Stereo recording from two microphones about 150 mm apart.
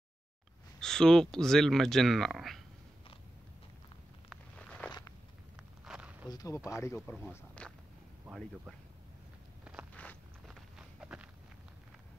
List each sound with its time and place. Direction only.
0.7 s speech: 5° left (ahead or behind)
4.6 s walk: 10° left (ahead or behind)
5.9 s a sound: 10° right (ahead or behind)
6.2 s speech: 25° left (ahead or behind)
7.6 s walk: 10° left (ahead or behind)
8.3 s speech: centre (ahead or behind)
9.7 s walk: 5° right (ahead or behind)